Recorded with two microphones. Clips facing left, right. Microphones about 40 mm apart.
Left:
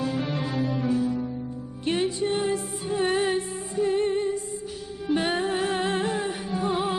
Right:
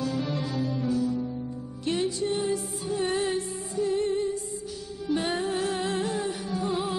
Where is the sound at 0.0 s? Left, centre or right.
Left.